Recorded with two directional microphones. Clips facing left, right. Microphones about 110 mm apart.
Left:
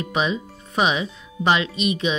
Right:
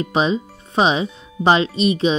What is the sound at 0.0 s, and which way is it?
Speech, 30° right (ahead or behind).